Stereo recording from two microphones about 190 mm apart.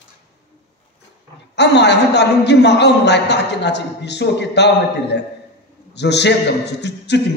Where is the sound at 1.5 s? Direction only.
65° left (ahead or behind).